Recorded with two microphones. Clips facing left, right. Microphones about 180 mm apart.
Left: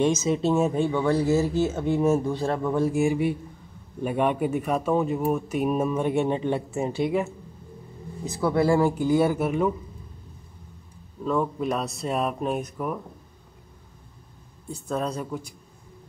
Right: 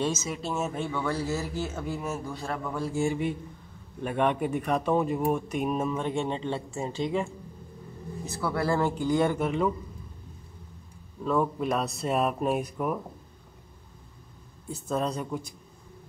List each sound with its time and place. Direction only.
0.0 s speech: 20° left (ahead or behind)
11.2 s speech: centre (ahead or behind)
14.7 s speech: centre (ahead or behind)